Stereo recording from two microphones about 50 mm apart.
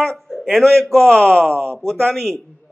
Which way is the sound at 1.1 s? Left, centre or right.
Centre.